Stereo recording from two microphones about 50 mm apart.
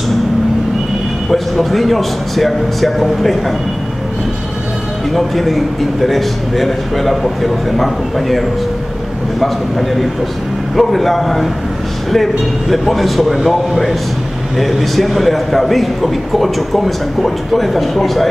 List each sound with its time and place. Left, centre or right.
1.3 s a man's voice: centre
5.1 s a man's voice: centre